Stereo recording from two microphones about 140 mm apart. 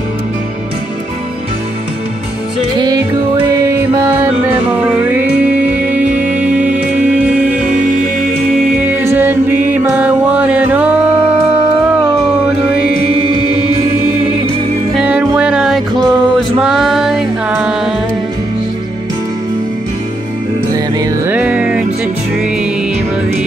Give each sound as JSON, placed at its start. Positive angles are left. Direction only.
{"t": 2.8, "sound": "music", "side_deg": -30}
{"t": 5.7, "sound": "music", "side_deg": -10}
{"t": 8.8, "sound": "music", "side_deg": -15}
{"t": 15.0, "sound": "music", "side_deg": -10}
{"t": 21.3, "sound": "music", "side_deg": -10}